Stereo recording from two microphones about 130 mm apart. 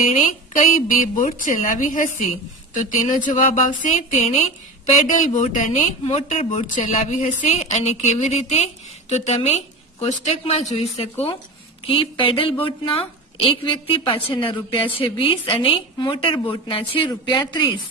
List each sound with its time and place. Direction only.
0.1 s a woman's voice: 90° left; by 4.5 s 60° left (ahead or behind)
5.0 s a woman's voice: 75° left (ahead or behind); by 17.6 s 35° left (ahead or behind)